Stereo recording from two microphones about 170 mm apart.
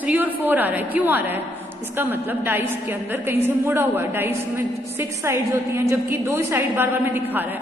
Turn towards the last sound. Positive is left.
turn(degrees=-10)  # may be behind; listen again after turning